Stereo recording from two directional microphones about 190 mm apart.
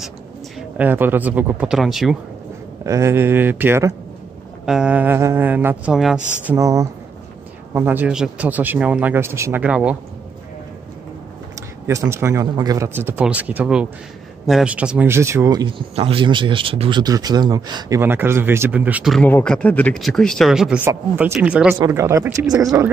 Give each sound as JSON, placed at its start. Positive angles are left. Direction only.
{"t": 0.6, "sound": "speech", "side_deg": -10}
{"t": 2.8, "sound": "speech", "side_deg": -15}
{"t": 6.4, "sound": "speech", "side_deg": -15}
{"t": 11.9, "sound": "speech", "side_deg": -15}
{"t": 15.9, "sound": "speech", "side_deg": -30}
{"t": 19.2, "sound": "speech", "side_deg": 5}
{"t": 21.7, "sound": "speech", "side_deg": -15}